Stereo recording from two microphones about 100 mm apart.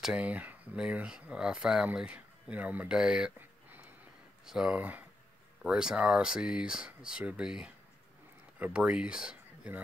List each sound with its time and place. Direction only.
0.0 s speech: 10° right (ahead or behind)
4.5 s speech: 10° right (ahead or behind)